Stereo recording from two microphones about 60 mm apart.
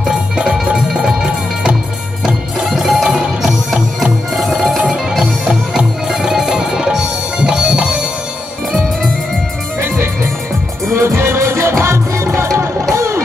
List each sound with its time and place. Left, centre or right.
0.0 s music: centre
2.2 s music: centre
5.2 s music: centre
10.9 s music: right